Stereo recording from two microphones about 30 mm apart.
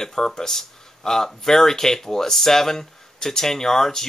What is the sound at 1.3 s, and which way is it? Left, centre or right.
Speech, centre.